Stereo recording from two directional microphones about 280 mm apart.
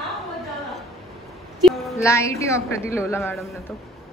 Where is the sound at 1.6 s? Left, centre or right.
Centre.